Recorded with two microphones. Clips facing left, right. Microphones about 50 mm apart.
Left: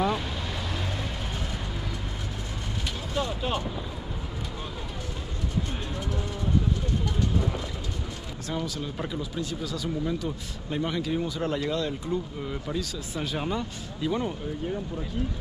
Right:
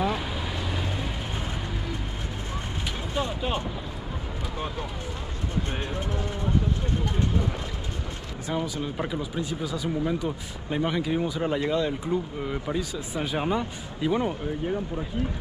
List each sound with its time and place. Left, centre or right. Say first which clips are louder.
0.0 s vehicle: even; centre
3.2 s vehicle: even; centre
5.7 s speech: right 2 dB; right
8.5 s speech: right 3 dB; centre